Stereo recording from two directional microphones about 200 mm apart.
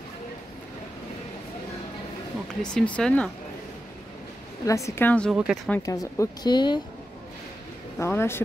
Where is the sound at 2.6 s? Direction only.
5° left (ahead or behind).